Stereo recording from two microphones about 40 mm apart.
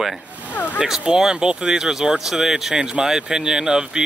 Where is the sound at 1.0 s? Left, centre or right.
Centre.